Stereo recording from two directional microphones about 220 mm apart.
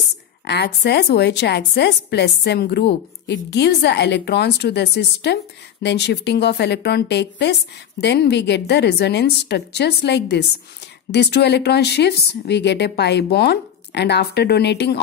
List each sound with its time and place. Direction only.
0.5 s a woman's voice: 50° left (ahead or behind)